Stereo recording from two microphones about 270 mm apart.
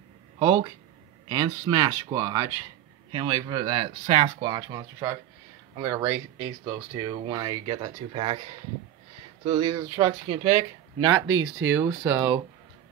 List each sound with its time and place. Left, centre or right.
0.4 s speech: centre
9.4 s speech: centre
11.2 s speech: right
11.7 s speech: centre